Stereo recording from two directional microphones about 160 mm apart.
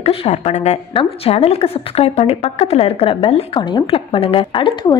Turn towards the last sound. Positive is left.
turn(degrees=30)  # may be behind; listen again after turning